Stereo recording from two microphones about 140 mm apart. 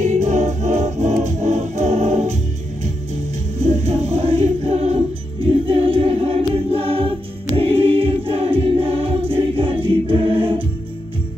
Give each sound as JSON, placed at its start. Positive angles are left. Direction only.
{"t": 0.0, "sound": "music", "side_deg": -55}
{"t": 3.5, "sound": "music", "side_deg": -50}
{"t": 9.3, "sound": "choir", "side_deg": -40}